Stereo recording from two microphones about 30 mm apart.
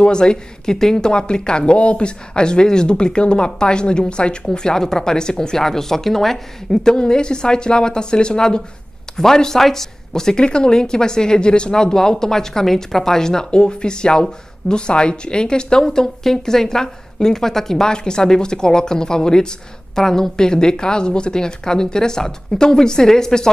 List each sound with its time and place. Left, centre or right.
0.0 s speech: left
0.7 s speech: centre
4.5 s speech: left
5.6 s a woman's voice: centre
7.0 s speech: left
10.3 s speech: left
13.5 s speech: left
15.8 s a woman's voice: centre